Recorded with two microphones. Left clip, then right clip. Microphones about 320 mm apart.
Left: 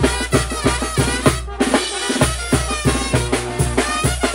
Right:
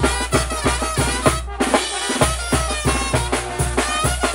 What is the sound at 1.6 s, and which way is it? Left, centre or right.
Drum, right.